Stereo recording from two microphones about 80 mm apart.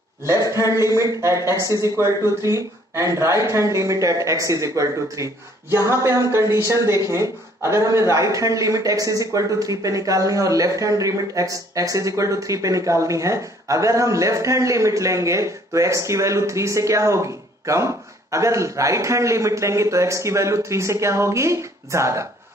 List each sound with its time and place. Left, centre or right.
0.2 s speech: right